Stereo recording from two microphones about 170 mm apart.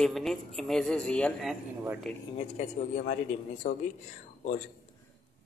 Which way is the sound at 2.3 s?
45° left (ahead or behind).